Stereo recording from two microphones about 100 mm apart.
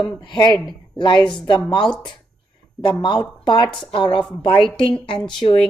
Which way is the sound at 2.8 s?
50° left (ahead or behind).